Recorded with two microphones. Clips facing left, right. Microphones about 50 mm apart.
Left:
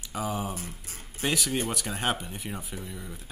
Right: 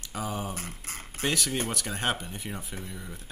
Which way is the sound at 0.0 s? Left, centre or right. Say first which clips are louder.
Left 2 dB; centre.